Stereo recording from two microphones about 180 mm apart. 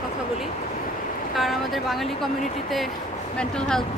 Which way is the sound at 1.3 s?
Centre (ahead or behind).